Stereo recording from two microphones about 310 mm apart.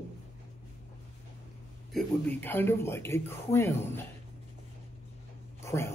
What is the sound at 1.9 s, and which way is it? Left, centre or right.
Speech, centre.